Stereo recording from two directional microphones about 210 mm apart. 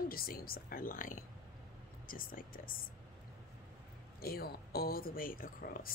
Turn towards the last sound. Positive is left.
turn(degrees=40)  # may be behind; listen again after turning